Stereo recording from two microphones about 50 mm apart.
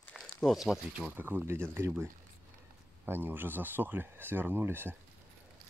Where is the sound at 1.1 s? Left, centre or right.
Right.